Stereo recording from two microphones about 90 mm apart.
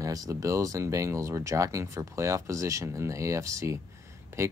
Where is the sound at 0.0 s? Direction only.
40° right (ahead or behind).